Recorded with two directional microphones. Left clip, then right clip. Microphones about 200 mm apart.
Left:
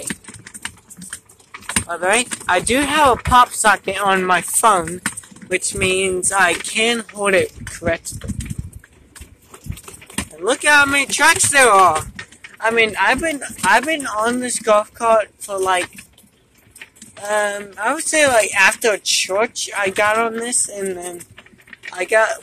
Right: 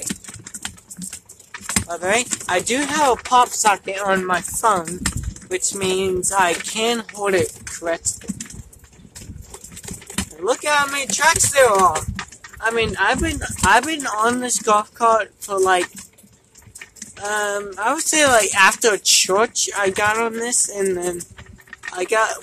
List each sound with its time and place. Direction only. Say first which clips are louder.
1.9 s speech: left 3 dB; centre (ahead or behind)
4.3 s speech: left 4 dB; 15° left (ahead or behind)
5.5 s speech: left 3 dB; centre (ahead or behind)
7.7 s a sound: left 4 dB; 10° right (ahead or behind)
10.4 s speech: left 5 dB; 10° left (ahead or behind)
12.5 s speech: left 4 dB; centre (ahead or behind)
13.4 s speech: even; 15° right (ahead or behind)
17.2 s speech: left 2 dB; 5° right (ahead or behind)